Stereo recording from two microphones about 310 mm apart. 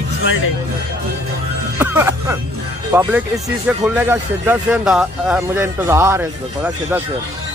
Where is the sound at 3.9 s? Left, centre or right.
Centre.